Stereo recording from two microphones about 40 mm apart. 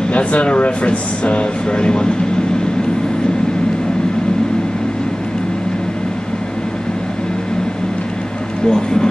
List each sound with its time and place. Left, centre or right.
0.1 s speech: left
8.6 s speech: centre